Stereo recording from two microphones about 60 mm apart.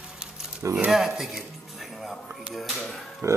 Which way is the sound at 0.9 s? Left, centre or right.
Centre.